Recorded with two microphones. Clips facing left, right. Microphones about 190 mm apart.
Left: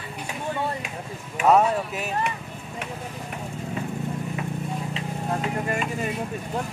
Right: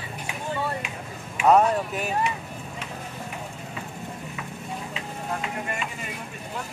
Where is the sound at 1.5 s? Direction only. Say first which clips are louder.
Even; centre (ahead or behind).